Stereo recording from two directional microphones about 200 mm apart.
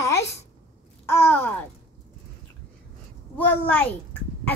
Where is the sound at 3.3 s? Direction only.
10° left (ahead or behind).